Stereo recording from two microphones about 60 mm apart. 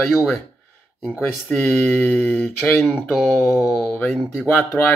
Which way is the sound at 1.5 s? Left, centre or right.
Left.